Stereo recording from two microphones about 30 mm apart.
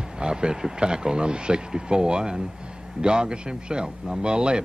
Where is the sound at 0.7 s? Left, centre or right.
Right.